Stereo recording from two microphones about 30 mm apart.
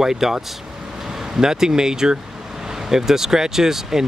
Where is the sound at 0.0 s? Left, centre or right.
Centre.